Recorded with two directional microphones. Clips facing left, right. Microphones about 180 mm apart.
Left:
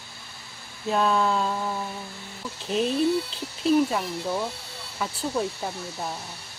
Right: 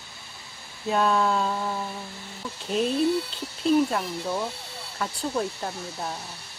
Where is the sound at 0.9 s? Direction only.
Centre (ahead or behind).